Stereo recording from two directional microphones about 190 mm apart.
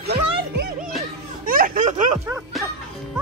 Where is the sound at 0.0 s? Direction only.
60° right (ahead or behind).